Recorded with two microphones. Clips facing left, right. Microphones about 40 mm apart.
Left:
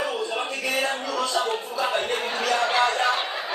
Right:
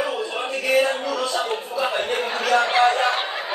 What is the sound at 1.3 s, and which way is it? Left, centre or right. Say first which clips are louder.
Speech: right 1 dB; right.